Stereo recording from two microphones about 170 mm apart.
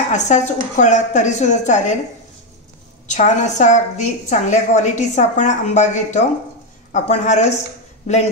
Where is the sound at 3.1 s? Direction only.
45° left (ahead or behind).